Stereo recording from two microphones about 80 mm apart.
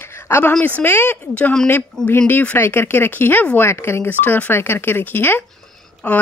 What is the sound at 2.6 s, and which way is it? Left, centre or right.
Speech, left.